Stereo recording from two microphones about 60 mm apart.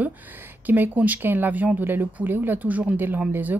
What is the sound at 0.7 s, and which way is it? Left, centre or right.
Speech, right.